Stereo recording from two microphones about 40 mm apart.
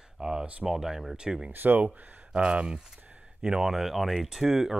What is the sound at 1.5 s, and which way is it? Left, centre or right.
Speech, right.